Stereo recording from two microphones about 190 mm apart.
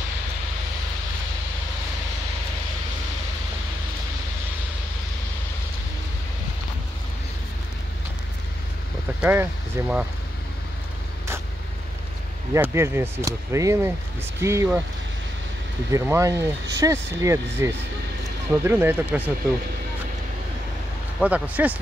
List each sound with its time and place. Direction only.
9.2 s speech: 10° right (ahead or behind)
12.5 s speech: 15° right (ahead or behind)
15.9 s speech: 15° right (ahead or behind)
21.2 s speech: 10° right (ahead or behind)